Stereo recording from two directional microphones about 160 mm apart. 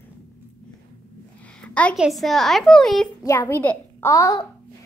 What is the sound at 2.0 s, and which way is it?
A woman's voice, centre (ahead or behind).